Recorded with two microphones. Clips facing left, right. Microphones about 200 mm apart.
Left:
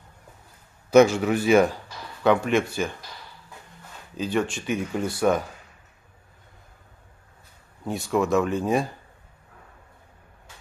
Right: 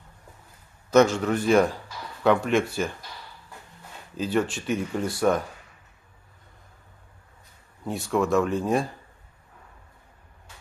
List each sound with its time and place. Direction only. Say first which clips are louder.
0.8 s a man's voice: left 3 dB; 10° left (ahead or behind)
4.2 s speech: even; centre (ahead or behind)
7.8 s speech: left 1 dB; centre (ahead or behind)